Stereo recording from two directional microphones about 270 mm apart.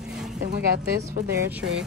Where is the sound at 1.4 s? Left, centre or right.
Centre.